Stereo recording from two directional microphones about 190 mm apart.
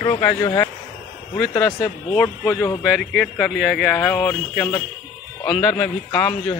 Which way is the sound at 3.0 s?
Centre (ahead or behind).